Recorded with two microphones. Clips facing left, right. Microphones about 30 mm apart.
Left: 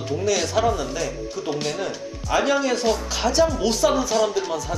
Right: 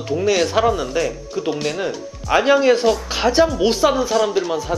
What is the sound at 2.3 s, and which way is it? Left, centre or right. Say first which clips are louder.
A woman's voice: right 7 dB; right.